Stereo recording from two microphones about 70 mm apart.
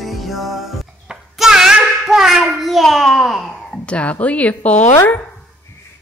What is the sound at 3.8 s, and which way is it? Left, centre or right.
Speech, centre.